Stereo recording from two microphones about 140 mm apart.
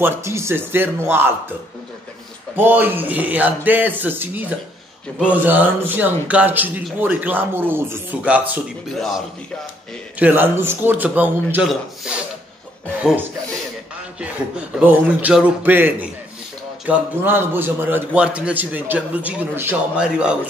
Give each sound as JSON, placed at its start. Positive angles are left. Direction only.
{"t": 0.0, "sound": "a man's voice", "side_deg": -20}
{"t": 2.5, "sound": "a man's voice", "side_deg": -15}
{"t": 8.9, "sound": "speech", "side_deg": 0}
{"t": 10.1, "sound": "a man's voice", "side_deg": -15}
{"t": 14.8, "sound": "a man's voice", "side_deg": -10}